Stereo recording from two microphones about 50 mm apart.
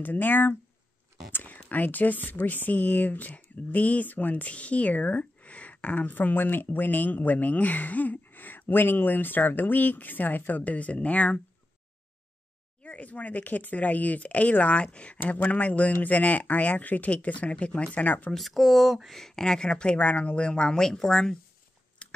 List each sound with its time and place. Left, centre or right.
0.0 s speech: left
1.3 s whispering: left
1.7 s speech: left
12.8 s speech: left
18.3 s speech: centre
19.1 s speech: centre
22.0 s a sound: left